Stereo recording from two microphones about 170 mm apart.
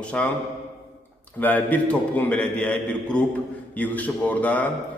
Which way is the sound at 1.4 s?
10° left (ahead or behind).